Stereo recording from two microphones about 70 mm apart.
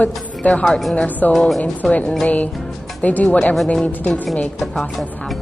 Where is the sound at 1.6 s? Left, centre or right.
Left.